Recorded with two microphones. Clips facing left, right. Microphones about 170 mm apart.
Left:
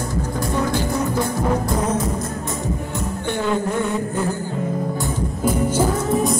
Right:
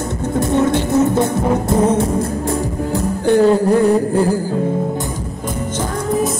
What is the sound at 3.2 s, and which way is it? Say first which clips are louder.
Music: right 11 dB; 35° right (ahead or behind).